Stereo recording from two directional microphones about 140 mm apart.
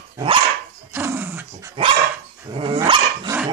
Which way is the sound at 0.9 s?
15° right (ahead or behind).